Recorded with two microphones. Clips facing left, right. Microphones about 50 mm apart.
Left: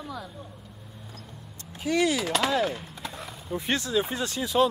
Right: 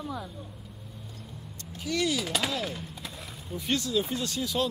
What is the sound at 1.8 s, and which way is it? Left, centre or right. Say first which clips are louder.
Speech: left 4 dB; left.